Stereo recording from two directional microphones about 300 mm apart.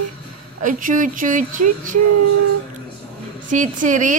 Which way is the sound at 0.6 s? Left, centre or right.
Right.